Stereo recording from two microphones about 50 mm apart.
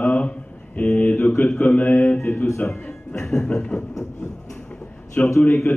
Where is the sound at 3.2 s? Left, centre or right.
Centre.